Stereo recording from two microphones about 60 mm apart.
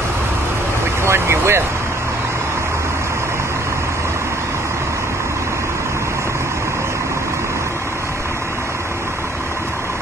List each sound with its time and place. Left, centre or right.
1.0 s vehicle: right